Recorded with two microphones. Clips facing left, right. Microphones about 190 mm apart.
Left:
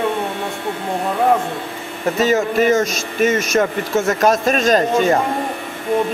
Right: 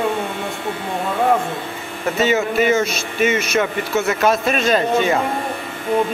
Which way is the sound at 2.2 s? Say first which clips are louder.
Left 1 dB; 40° left (ahead or behind).